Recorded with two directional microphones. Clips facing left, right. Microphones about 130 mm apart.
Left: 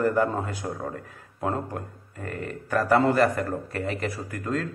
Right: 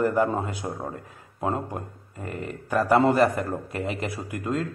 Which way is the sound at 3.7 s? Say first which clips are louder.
Even; 15° right (ahead or behind).